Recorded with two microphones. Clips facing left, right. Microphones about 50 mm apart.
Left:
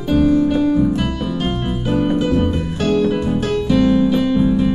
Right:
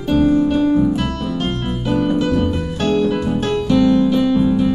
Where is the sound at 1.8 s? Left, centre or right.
Centre.